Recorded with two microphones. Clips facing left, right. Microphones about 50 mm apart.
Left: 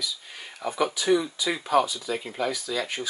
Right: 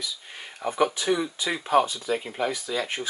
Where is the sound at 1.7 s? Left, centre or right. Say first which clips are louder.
Right 2 dB; right.